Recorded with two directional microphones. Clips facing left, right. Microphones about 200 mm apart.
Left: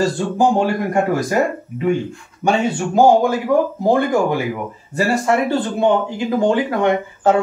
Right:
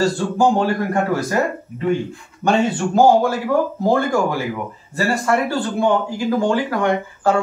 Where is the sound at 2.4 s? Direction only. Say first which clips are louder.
Even; 15° left (ahead or behind).